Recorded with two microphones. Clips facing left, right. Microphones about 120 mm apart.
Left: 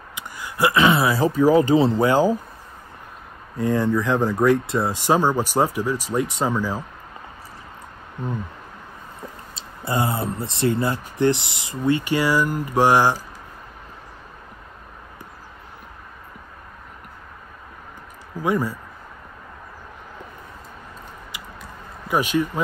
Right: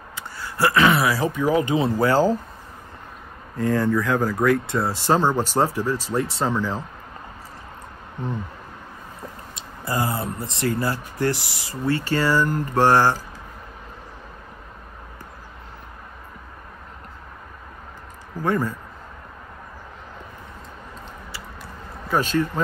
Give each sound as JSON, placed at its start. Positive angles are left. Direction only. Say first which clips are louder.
{"t": 0.1, "sound": "speech", "louder": "even", "side_deg": 15}
{"t": 3.5, "sound": "speech", "louder": "even", "side_deg": 15}
{"t": 9.6, "sound": "speech", "louder": "left 2 dB", "side_deg": 25}
{"t": 18.4, "sound": "speech", "louder": "left 1 dB", "side_deg": 10}
{"t": 21.3, "sound": "chewing", "louder": "even", "side_deg": 15}
{"t": 22.0, "sound": "speech", "louder": "even", "side_deg": 15}